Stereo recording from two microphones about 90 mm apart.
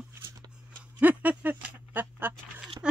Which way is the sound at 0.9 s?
20° right (ahead or behind).